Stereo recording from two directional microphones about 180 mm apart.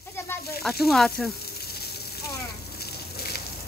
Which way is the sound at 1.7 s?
60° left (ahead or behind).